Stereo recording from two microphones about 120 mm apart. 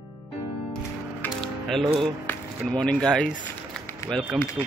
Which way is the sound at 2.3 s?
15° left (ahead or behind).